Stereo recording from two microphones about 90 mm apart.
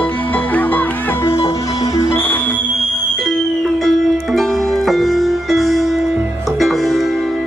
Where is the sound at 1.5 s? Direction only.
40° left (ahead or behind).